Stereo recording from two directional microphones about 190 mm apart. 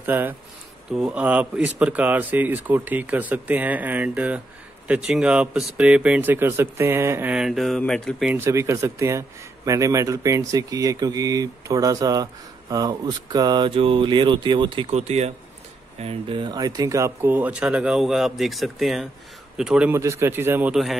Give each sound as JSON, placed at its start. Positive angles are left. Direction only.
{"t": 0.0, "sound": "speech", "side_deg": -10}
{"t": 8.4, "sound": "speech", "side_deg": -15}